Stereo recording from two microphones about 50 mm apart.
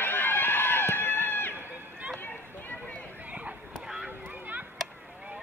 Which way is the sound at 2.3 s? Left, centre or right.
Left.